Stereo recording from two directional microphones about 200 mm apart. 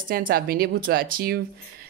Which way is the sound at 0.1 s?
50° right (ahead or behind).